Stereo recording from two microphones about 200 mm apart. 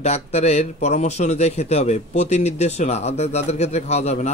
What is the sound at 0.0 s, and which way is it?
Speech, 35° left (ahead or behind).